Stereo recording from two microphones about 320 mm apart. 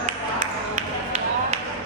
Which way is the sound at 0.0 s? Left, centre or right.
Right.